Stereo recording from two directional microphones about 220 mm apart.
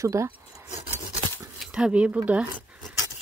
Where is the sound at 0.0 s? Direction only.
15° right (ahead or behind).